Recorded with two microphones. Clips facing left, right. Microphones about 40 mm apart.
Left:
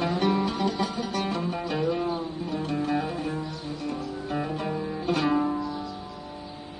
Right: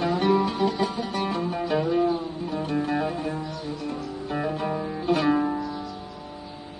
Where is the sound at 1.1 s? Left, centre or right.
Centre.